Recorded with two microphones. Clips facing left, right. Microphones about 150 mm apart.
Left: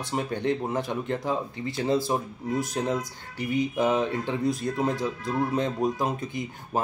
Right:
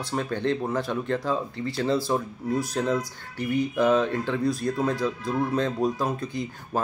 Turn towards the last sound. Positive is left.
turn(degrees=20)  # may be behind; listen again after turning